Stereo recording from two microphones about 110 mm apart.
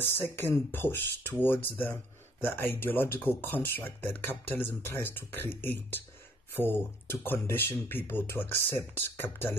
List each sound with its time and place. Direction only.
0.4 s speech: 20° left (ahead or behind)